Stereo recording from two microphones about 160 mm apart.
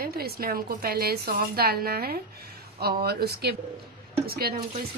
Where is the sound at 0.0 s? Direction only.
70° right (ahead or behind); by 3.5 s 90° right.